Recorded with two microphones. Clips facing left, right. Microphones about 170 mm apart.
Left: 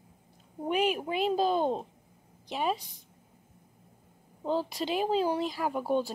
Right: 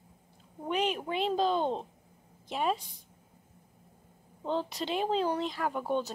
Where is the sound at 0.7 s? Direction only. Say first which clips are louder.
Left 2 dB; 10° left (ahead or behind).